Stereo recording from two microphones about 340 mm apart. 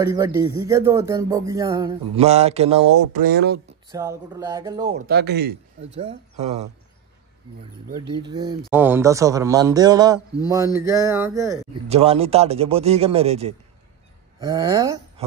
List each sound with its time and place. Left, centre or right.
0.0 s speech: centre; by 3.6 s right
3.9 s speech: centre
5.0 s speech: right
8.2 s speech: centre